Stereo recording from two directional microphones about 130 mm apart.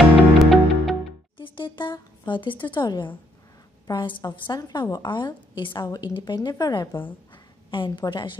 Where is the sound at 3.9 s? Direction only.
40° left (ahead or behind).